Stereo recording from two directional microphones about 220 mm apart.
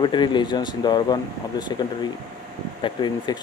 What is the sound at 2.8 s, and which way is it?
Speech, 20° left (ahead or behind).